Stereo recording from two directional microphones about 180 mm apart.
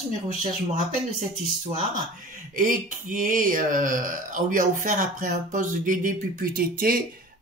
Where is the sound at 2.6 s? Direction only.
50° right (ahead or behind).